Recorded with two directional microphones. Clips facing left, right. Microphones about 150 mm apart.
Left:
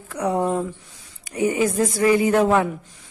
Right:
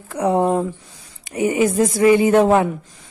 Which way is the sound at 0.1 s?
30° right (ahead or behind).